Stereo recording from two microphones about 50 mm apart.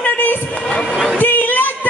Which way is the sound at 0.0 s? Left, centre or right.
Left.